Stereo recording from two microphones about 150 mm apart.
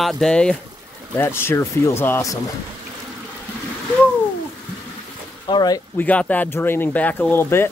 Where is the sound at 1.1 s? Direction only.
15° left (ahead or behind).